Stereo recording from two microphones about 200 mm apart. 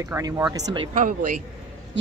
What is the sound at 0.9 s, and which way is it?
Speech, 40° right (ahead or behind).